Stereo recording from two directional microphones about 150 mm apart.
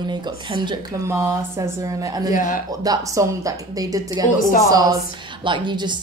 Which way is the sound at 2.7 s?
25° right (ahead or behind).